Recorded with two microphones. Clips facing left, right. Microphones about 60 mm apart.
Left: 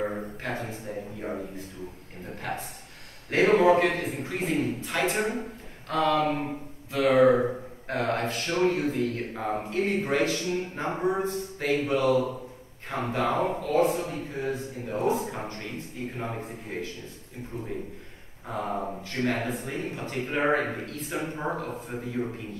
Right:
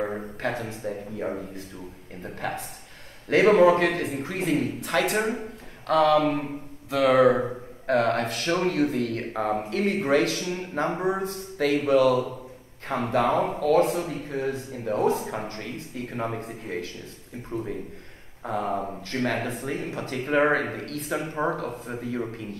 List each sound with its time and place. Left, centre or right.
0.4 s speech: right
3.3 s speech: right
18.5 s speech: right
20.7 s speech: right